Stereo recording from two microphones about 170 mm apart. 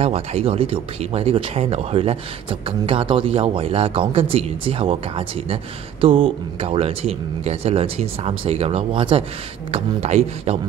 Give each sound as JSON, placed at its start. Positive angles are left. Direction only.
{"t": 0.0, "sound": "a man's voice", "side_deg": -35}